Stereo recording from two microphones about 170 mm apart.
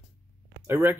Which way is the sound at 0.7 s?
15° right (ahead or behind).